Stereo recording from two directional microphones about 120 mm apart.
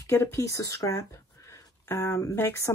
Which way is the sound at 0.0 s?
25° left (ahead or behind).